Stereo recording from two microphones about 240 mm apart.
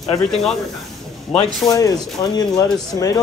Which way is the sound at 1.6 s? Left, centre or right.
Centre.